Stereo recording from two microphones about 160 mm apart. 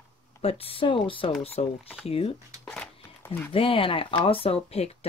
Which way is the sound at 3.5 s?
35° left (ahead or behind).